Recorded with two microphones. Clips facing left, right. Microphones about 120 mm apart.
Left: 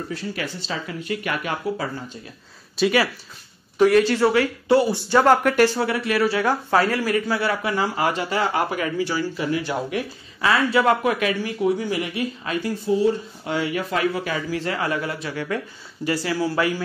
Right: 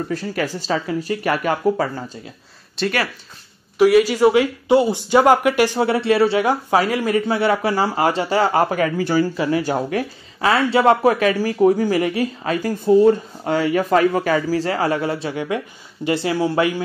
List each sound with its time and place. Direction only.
0.1 s speech: 45° right (ahead or behind)
2.8 s speech: 10° left (ahead or behind)
3.7 s speech: 5° right (ahead or behind)
5.9 s a man's voice: 30° right (ahead or behind)
10.5 s speech: 30° right (ahead or behind)